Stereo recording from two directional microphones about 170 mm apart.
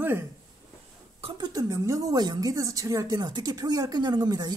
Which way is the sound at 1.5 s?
15° right (ahead or behind).